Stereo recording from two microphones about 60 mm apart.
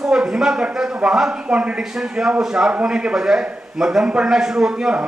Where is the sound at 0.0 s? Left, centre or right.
Centre.